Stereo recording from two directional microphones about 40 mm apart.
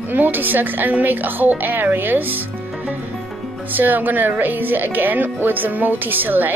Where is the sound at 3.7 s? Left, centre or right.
Right.